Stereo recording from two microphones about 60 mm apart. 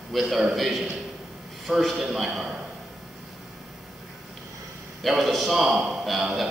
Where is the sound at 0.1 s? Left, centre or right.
Centre.